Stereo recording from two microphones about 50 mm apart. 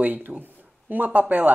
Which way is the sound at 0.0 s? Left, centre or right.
Right.